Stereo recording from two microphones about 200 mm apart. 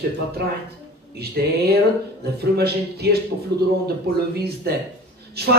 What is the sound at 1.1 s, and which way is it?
Speech, 50° right (ahead or behind).